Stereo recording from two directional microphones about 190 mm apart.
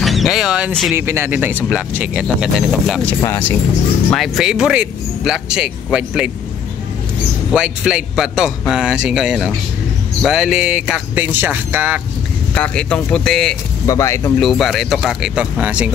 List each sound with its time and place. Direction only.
0.0 s speech: centre (ahead or behind)
3.1 s speech: 10° left (ahead or behind)
4.1 s speech: centre (ahead or behind)
7.5 s speech: 5° right (ahead or behind)
12.5 s speech: 5° left (ahead or behind)
13.8 s speech: 15° left (ahead or behind)
14.4 s speech: centre (ahead or behind)